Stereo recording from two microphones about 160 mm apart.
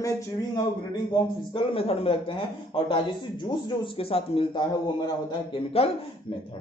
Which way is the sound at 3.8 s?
35° left (ahead or behind).